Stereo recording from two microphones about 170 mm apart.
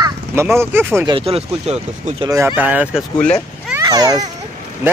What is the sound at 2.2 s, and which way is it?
Speech, 15° right (ahead or behind).